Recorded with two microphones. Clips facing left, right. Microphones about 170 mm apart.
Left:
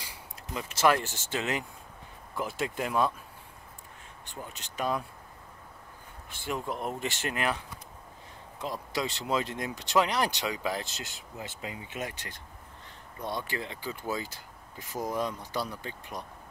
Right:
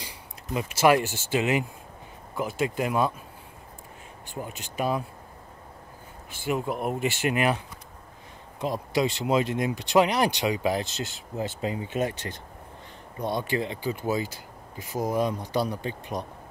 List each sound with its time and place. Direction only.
0.6 s speech: 10° right (ahead or behind)
4.3 s speech: 10° right (ahead or behind)
6.3 s speech: 5° right (ahead or behind)
8.5 s speech: 20° right (ahead or behind)
13.2 s speech: 20° right (ahead or behind)